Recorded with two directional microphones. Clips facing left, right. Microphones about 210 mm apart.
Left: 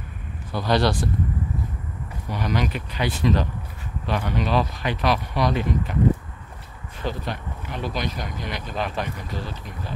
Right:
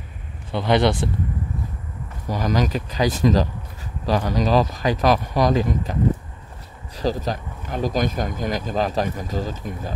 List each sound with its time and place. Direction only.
0.5 s speech: 20° right (ahead or behind)
2.2 s speech: 40° right (ahead or behind)
7.0 s speech: 40° right (ahead or behind)